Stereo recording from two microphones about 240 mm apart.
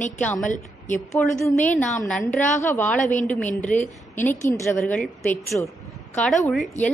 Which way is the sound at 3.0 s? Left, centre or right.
Left.